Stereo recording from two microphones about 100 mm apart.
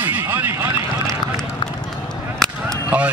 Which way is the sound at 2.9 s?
10° right (ahead or behind).